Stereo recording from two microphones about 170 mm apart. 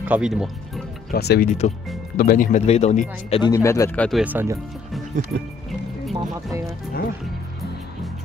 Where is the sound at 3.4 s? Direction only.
20° left (ahead or behind).